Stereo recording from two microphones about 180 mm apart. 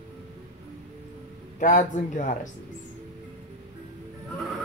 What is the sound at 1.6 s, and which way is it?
Speech, 45° left (ahead or behind).